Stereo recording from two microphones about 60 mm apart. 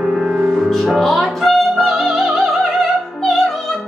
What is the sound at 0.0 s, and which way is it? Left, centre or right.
Music, centre.